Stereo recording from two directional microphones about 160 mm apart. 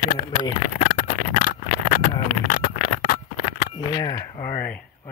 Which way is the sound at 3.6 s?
90° left.